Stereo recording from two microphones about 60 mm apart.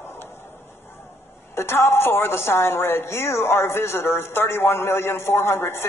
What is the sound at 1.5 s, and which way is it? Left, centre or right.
A woman's voice, left.